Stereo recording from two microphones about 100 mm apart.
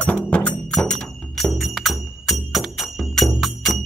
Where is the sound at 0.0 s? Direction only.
15° left (ahead or behind).